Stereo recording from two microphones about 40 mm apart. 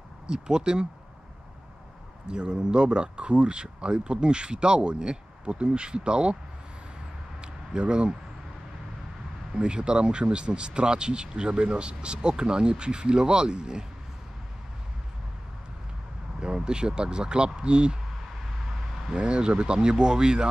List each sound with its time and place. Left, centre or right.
0.3 s speech: centre
2.2 s speech: right
7.4 s a sound: right
9.6 s speech: right
16.3 s speech: centre
19.0 s speech: right